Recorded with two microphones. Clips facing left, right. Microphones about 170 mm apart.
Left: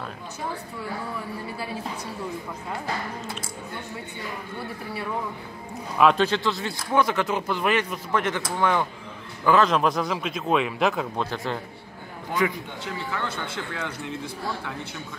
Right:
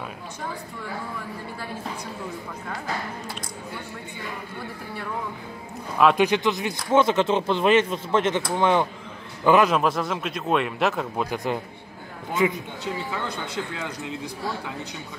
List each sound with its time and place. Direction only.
6.1 s a man's voice: 15° right (ahead or behind)
9.7 s a man's voice: centre (ahead or behind)
11.2 s a man's voice: 15° right (ahead or behind)